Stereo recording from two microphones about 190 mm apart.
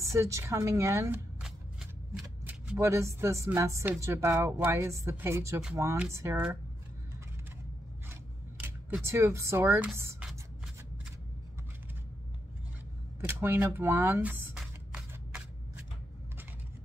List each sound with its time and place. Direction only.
0.0 s speech: 15° right (ahead or behind)
1.4 s a sound: 5° right (ahead or behind)
2.2 s speech: 10° right (ahead or behind)
8.1 s scissors: 10° right (ahead or behind)
9.0 s speech: 15° right (ahead or behind)
13.2 s a sound: 10° right (ahead or behind)